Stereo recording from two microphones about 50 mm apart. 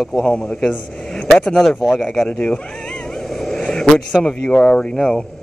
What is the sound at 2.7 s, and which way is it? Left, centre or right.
Vehicle, centre.